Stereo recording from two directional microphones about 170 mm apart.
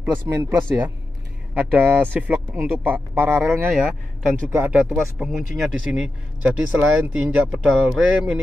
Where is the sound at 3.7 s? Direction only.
Centre (ahead or behind).